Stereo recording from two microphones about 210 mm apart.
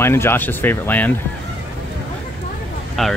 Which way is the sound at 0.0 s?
10° left (ahead or behind).